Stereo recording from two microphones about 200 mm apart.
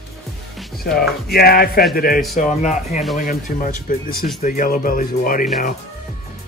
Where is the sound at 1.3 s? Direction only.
50° left (ahead or behind).